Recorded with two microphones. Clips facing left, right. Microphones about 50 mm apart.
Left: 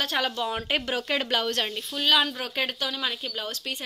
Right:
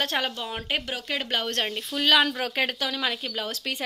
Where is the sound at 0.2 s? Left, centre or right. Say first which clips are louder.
Left 3 dB; right.